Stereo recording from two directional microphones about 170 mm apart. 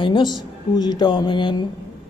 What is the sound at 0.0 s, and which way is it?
Speech, 30° left (ahead or behind).